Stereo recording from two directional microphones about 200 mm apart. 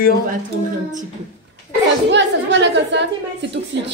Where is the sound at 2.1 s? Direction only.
60° right (ahead or behind).